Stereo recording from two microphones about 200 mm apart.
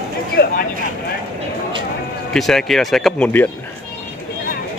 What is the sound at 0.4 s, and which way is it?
Speech, 50° left (ahead or behind).